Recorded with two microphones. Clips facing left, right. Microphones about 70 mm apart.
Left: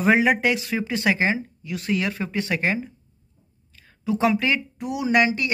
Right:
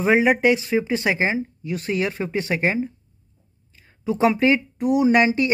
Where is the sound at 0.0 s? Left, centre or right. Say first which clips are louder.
Right 1 dB; centre.